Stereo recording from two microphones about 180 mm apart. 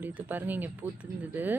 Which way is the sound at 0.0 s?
10° right (ahead or behind).